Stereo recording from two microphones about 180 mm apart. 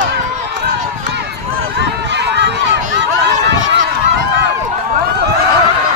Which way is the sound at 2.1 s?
75° right (ahead or behind).